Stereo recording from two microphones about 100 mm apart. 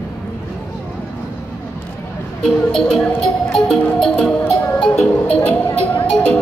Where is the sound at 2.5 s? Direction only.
5° left (ahead or behind).